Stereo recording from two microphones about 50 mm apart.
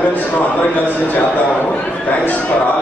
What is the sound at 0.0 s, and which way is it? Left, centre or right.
A man's voice, left.